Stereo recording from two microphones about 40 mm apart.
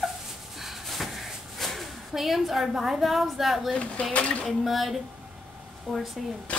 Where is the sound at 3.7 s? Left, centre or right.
Left.